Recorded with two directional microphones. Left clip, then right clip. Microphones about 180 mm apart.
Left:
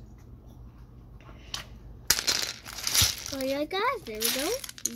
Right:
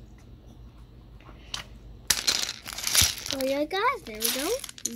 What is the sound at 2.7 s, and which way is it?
Crumpling, 60° right (ahead or behind).